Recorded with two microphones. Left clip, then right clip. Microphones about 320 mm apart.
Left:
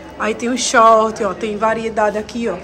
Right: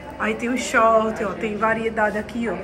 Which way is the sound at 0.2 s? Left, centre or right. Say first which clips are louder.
Left 5 dB; centre.